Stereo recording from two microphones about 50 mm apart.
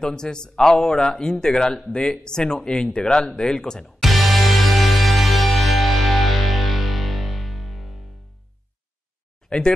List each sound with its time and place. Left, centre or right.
0.0 s speech: centre
4.0 s music: centre
9.5 s speech: centre